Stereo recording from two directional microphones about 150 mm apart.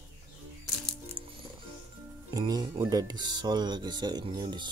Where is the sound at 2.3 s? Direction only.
25° right (ahead or behind).